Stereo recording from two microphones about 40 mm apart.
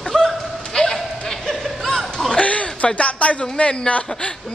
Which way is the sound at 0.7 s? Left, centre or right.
Centre.